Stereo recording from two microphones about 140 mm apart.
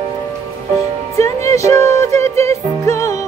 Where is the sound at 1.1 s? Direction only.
20° left (ahead or behind).